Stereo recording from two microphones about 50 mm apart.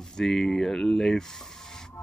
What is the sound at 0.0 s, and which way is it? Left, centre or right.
Speech, centre.